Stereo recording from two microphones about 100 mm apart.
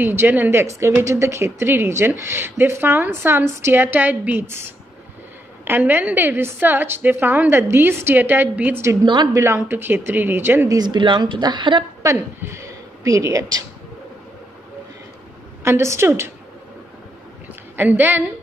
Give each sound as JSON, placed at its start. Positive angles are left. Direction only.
{"t": 0.0, "sound": "speech", "side_deg": -20}
{"t": 9.0, "sound": "a woman's voice", "side_deg": -50}
{"t": 9.3, "sound": "speech", "side_deg": -25}
{"t": 10.7, "sound": "a woman's voice", "side_deg": -45}
{"t": 12.4, "sound": "speech", "side_deg": -25}
{"t": 15.6, "sound": "speech", "side_deg": -25}
{"t": 17.7, "sound": "speech", "side_deg": -20}